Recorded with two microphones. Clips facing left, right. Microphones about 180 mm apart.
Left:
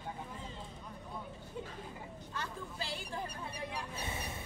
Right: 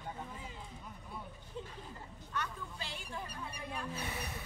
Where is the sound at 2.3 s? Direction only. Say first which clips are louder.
Right 2 dB; 30° left (ahead or behind).